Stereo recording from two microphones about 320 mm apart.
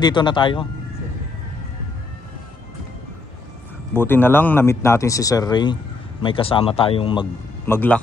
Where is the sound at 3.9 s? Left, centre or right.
Centre.